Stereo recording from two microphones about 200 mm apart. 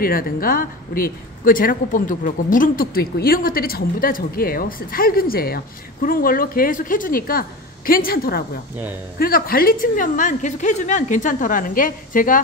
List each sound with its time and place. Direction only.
0.0 s a woman's voice: 45° left (ahead or behind)